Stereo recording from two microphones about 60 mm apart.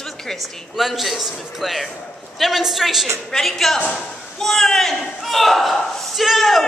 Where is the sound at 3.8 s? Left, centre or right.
Centre.